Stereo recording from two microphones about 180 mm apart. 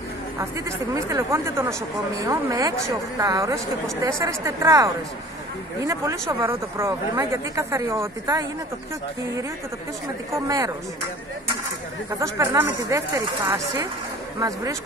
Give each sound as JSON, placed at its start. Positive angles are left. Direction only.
{"t": 0.4, "sound": "speech", "side_deg": -15}
{"t": 10.3, "sound": "speech", "side_deg": -15}
{"t": 12.2, "sound": "speech", "side_deg": -15}